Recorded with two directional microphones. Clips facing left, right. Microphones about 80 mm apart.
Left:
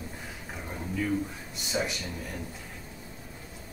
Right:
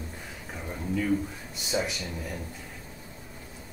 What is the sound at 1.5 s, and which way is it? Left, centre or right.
Speech, centre.